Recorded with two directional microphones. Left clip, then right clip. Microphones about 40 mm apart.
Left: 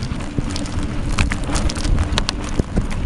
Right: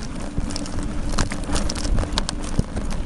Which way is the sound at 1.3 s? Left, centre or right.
Left.